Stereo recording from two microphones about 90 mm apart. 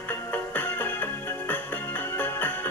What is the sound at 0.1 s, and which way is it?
Music, 20° left (ahead or behind).